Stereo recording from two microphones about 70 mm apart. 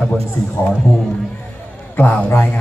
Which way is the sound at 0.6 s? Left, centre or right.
Left.